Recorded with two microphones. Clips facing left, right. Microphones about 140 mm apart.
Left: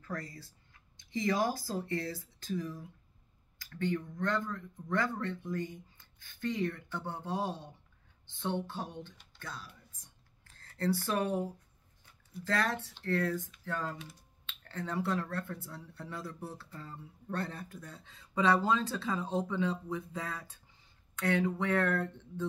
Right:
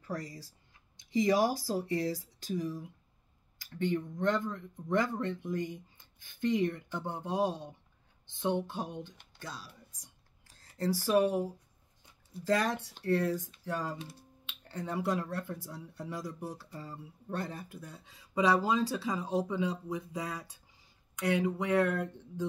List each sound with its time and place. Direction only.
0.0 s speech: 20° right (ahead or behind)